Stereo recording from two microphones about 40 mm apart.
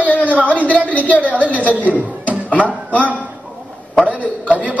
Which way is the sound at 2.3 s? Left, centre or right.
Left.